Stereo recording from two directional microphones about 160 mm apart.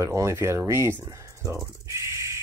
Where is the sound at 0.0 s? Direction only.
20° right (ahead or behind).